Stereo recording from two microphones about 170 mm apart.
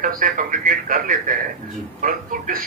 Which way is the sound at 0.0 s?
55° right (ahead or behind).